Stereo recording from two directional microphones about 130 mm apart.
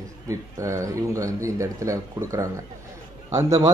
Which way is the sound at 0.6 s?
25° right (ahead or behind).